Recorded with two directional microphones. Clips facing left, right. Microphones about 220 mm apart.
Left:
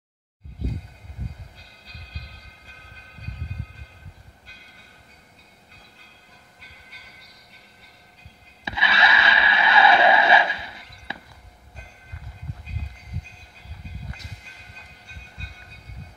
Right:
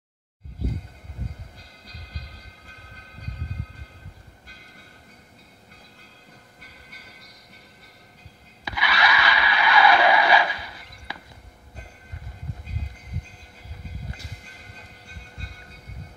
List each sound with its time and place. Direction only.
8.6 s music: 25° left (ahead or behind)